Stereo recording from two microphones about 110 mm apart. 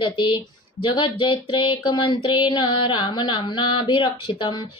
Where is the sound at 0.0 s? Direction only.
50° left (ahead or behind).